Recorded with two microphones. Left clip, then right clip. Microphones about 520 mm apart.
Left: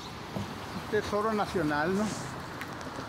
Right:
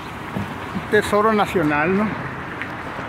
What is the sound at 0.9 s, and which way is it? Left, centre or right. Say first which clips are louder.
Speech: right 13 dB; left.